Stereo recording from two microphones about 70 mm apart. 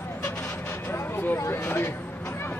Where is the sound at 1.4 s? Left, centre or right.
Left.